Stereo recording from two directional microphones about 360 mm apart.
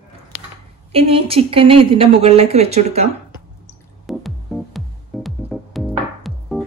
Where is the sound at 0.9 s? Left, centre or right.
Centre.